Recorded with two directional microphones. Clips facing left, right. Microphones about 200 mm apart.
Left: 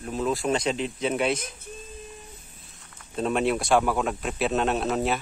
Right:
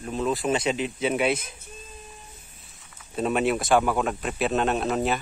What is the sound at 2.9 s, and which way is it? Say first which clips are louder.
Speech: right 1 dB; 5° right (ahead or behind).